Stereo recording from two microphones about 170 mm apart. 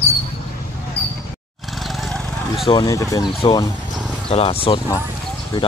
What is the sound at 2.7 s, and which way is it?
Speech, 20° left (ahead or behind).